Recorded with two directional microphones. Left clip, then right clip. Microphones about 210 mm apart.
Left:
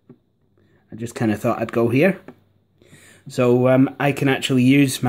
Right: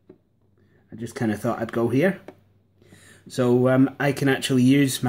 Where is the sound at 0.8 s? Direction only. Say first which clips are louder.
Left 4 dB; 35° left (ahead or behind).